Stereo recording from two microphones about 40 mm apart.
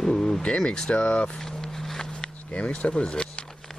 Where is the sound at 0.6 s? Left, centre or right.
Centre.